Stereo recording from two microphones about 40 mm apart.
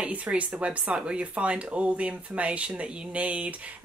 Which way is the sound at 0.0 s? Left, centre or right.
Right.